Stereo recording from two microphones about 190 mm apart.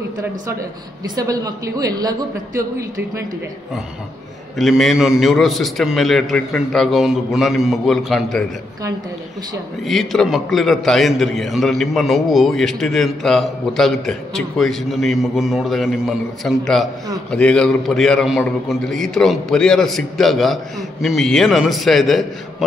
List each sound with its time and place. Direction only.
1.0 s a woman's voice: 20° right (ahead or behind)
4.6 s a man's voice: centre (ahead or behind)
9.8 s a man's voice: centre (ahead or behind)